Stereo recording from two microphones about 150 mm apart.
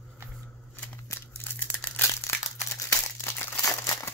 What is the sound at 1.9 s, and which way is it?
Crumpling, 20° left (ahead or behind).